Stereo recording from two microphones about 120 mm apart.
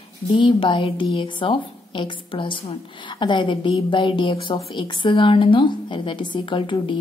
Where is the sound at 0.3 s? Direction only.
45° left (ahead or behind).